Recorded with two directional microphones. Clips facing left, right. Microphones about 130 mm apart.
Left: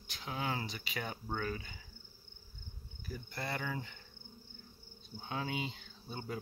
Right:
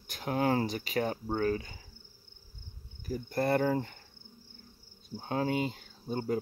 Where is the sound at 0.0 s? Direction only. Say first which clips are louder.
Right 10 dB; 50° right (ahead or behind); by 1.8 s 35° right (ahead or behind).